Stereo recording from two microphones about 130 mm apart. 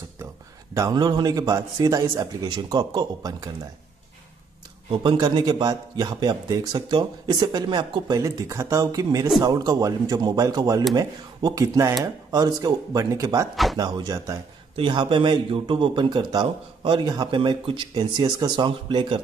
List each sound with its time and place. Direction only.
0.7 s a man's voice: 30° right (ahead or behind)
4.9 s a man's voice: 35° right (ahead or behind)
14.8 s speech: 40° right (ahead or behind)